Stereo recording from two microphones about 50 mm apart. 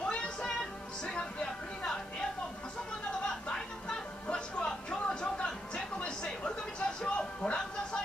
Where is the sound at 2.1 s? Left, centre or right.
Centre.